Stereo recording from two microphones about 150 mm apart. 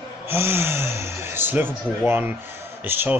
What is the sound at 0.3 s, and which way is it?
Speech, 15° right (ahead or behind).